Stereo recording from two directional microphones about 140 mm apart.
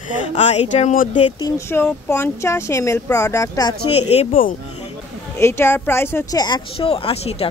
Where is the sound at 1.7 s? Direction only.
15° left (ahead or behind).